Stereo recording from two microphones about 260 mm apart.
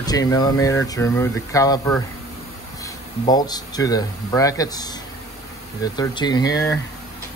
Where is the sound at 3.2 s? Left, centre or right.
Centre.